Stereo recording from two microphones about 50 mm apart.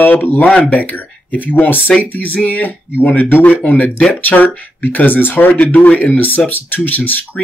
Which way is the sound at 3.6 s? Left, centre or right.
Left.